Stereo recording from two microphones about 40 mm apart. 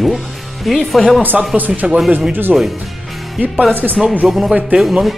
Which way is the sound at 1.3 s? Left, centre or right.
Centre.